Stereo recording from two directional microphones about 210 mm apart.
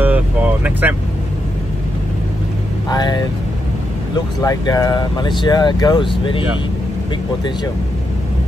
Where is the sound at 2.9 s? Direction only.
20° left (ahead or behind).